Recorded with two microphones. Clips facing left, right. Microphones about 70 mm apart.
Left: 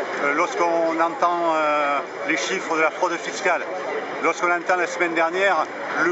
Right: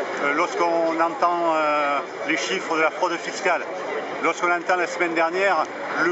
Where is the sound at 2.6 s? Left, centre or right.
Centre.